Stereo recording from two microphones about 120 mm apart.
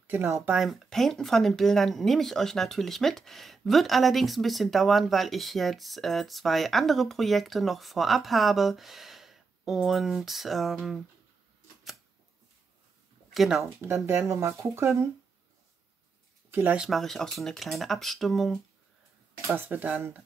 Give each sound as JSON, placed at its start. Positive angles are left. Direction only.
{"t": 0.0, "sound": "speech", "side_deg": -20}
{"t": 0.5, "sound": "speech", "side_deg": 0}
{"t": 13.3, "sound": "speech", "side_deg": 0}
{"t": 13.6, "sound": "speech", "side_deg": -20}
{"t": 16.4, "sound": "a sound", "side_deg": -20}
{"t": 16.7, "sound": "speech", "side_deg": 0}
{"t": 19.4, "sound": "speech", "side_deg": -20}